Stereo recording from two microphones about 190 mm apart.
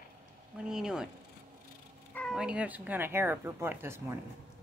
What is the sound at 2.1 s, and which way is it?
Speech, 5° left (ahead or behind).